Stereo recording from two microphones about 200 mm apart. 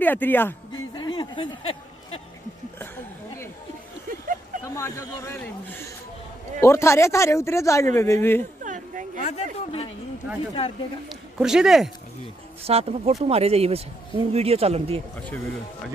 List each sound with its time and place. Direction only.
0.0 s speech: 10° left (ahead or behind)
0.9 s a sound: 20° left (ahead or behind)
4.7 s speech: 15° left (ahead or behind)
8.6 s a sound: 40° right (ahead or behind)
9.2 s speech: 35° left (ahead or behind)
11.3 s speech: 5° right (ahead or behind)
12.6 s speech: 30° right (ahead or behind)